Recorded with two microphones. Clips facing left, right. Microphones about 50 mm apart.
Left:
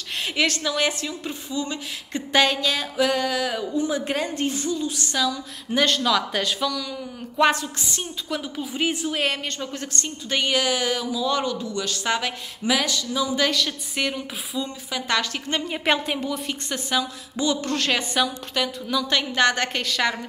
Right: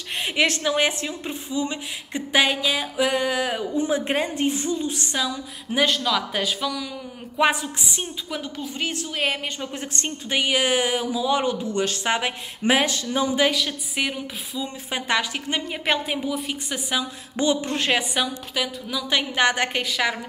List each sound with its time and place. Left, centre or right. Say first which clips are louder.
0.2 s speech: right 2 dB; right
5.7 s a woman's voice: left 1 dB; centre
8.3 s speech: left 2 dB; centre
9.2 s a woman's voice: even; centre
10.6 s speech: right 2 dB; right
11.6 s speech: right 2 dB; right
13.4 s a woman's voice: right 1 dB; centre
15.0 s a woman's voice: right 1 dB; centre
15.6 s a woman's voice: left 3 dB; centre
17.4 s a woman's voice: right 1 dB; right